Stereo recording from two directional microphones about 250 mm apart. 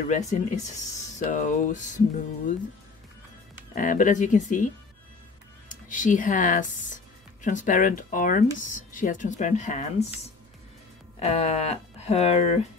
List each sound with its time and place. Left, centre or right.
0.3 s speech: left
1.3 s music: left
3.7 s music: left
5.7 s speech: left
7.4 s music: left
8.9 s speech: left